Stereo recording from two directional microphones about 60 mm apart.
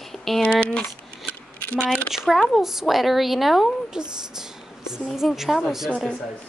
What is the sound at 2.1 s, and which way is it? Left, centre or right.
A woman's voice, centre.